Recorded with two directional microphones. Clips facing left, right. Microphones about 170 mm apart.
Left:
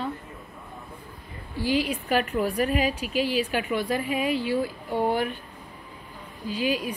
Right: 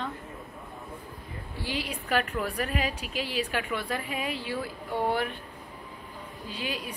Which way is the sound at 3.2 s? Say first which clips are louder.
Left 6 dB; 30° right (ahead or behind).